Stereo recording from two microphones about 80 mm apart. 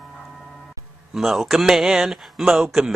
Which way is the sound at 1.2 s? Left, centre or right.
Centre.